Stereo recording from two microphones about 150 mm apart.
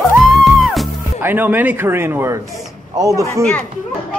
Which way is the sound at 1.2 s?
15° right (ahead or behind).